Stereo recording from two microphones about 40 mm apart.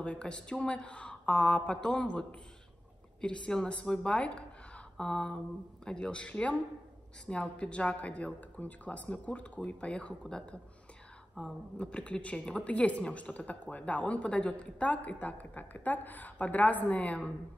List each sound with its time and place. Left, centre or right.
0.0 s speech: left
4.1 s speech: left